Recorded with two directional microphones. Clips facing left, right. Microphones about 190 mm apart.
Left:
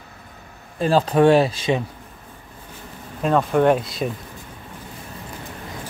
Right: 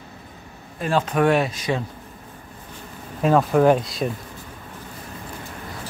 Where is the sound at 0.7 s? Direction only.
35° left (ahead or behind).